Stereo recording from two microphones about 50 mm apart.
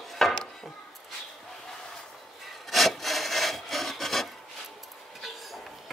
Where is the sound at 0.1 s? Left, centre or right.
Centre.